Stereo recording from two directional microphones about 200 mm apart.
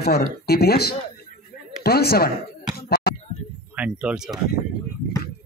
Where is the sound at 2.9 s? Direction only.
50° left (ahead or behind).